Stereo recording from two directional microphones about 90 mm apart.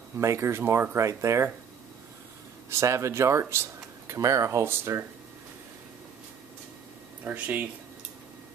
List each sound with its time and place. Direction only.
0.2 s speech: 30° right (ahead or behind)
2.7 s speech: 30° right (ahead or behind)
7.2 s speech: 15° right (ahead or behind)